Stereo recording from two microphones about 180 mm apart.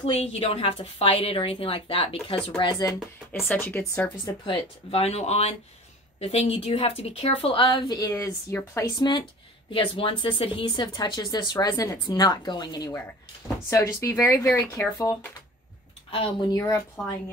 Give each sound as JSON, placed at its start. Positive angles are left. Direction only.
{"t": 0.0, "sound": "a woman's voice", "side_deg": 35}
{"t": 3.3, "sound": "speech", "side_deg": 10}
{"t": 4.5, "sound": "a woman's voice", "side_deg": 35}
{"t": 9.7, "sound": "speech", "side_deg": 30}
{"t": 16.1, "sound": "speech", "side_deg": 30}
{"t": 16.5, "sound": "speech", "side_deg": 15}